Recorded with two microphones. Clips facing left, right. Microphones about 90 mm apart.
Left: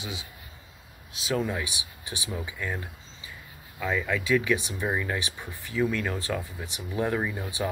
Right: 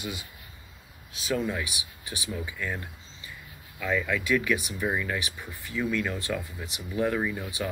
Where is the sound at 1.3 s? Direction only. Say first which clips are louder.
Even; 25° left (ahead or behind).